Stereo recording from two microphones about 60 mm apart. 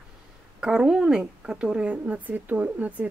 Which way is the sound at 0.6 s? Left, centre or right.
Centre.